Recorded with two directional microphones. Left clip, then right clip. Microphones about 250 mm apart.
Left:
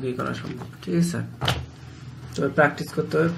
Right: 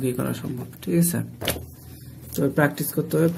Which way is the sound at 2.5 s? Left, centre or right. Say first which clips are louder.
Left 5 dB; right.